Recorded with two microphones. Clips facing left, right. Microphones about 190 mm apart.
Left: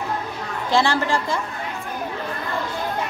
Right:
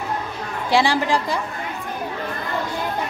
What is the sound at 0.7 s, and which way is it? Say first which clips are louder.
Speech: right 1 dB; 15° right (ahead or behind).